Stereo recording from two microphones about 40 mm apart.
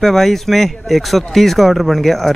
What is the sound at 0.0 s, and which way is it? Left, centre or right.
Speech, centre.